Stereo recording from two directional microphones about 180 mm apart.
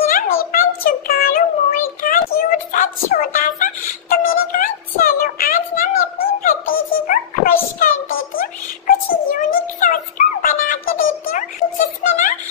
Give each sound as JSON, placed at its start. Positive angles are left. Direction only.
{"t": 0.5, "sound": "child singing", "side_deg": 55}
{"t": 2.0, "sound": "a sound", "side_deg": 50}
{"t": 6.2, "sound": "music", "side_deg": 50}